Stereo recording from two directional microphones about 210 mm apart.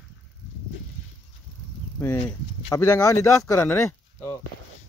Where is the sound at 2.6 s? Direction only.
10° left (ahead or behind).